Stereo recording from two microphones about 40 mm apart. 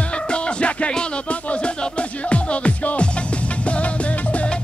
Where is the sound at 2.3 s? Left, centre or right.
Left.